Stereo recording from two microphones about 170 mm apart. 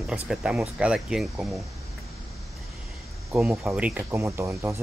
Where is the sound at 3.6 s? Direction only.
5° right (ahead or behind).